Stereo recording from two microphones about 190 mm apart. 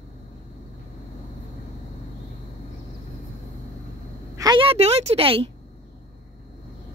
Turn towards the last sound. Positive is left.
turn(degrees=-30)  # may be behind; listen again after turning